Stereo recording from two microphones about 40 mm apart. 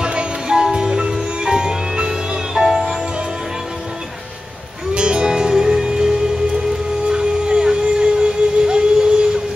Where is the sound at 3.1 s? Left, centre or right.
Right.